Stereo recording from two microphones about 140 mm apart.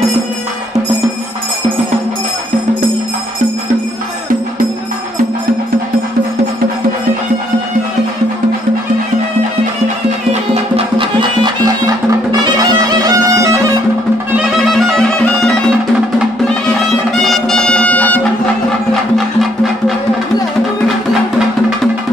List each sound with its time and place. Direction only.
10.3 s music: 50° right (ahead or behind); by 13.6 s 25° right (ahead or behind)
15.0 s bagpipes: 5° left (ahead or behind)
16.6 s music: centre (ahead or behind)